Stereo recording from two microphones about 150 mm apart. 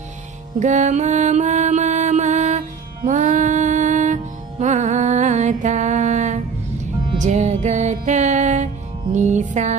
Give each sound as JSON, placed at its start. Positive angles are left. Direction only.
{"t": 0.6, "sound": "mantra", "side_deg": -55}
{"t": 3.0, "sound": "music", "side_deg": -55}